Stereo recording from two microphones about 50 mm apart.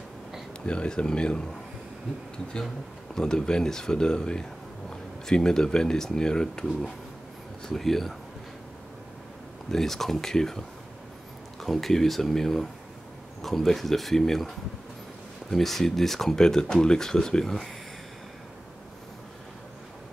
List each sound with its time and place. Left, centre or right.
0.7 s speech: centre
3.2 s speech: centre
9.7 s speech: centre
11.6 s speech: centre
15.5 s speech: centre